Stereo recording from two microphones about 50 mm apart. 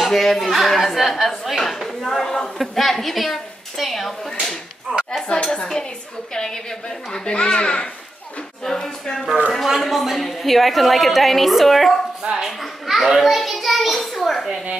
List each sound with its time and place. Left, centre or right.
0.0 s a child's voice: centre
9.8 s speech: centre
12.2 s speech: centre
12.4 s a child's voice: centre